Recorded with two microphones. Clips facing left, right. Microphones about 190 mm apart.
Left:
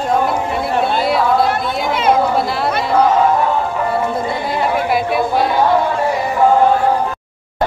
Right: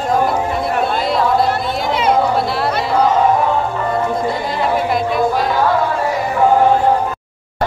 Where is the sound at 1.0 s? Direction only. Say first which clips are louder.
Even; 5° left (ahead or behind).